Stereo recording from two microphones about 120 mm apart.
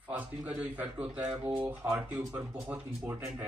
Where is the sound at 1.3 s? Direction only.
55° right (ahead or behind).